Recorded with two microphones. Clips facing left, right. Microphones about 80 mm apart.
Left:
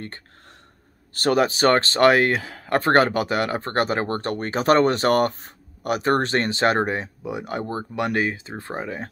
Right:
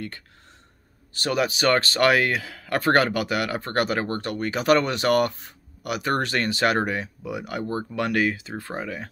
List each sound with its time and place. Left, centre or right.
1.1 s speech: left